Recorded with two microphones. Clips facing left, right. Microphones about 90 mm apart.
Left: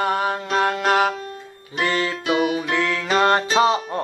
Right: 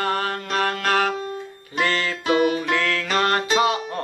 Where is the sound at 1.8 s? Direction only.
15° left (ahead or behind).